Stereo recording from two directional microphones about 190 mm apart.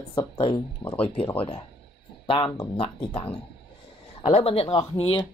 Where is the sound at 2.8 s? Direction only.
30° left (ahead or behind).